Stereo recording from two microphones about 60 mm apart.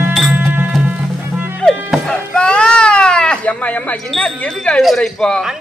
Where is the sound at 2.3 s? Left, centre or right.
Centre.